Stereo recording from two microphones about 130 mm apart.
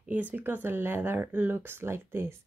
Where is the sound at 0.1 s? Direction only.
15° right (ahead or behind).